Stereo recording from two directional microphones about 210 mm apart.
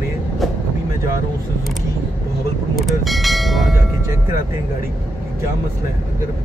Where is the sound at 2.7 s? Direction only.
Centre (ahead or behind).